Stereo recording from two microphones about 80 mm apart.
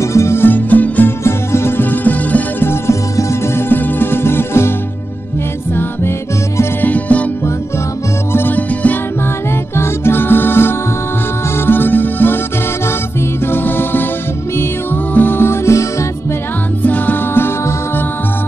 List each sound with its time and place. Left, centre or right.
0.0 s music: left
1.2 s music: left
5.8 s music: left
6.9 s music: centre
8.3 s music: left
13.5 s music: left
15.1 s music: left
16.8 s music: left